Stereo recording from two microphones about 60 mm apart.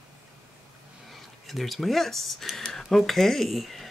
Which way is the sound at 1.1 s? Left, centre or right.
Centre.